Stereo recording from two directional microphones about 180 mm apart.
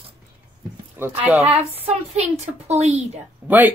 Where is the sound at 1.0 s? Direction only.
10° right (ahead or behind).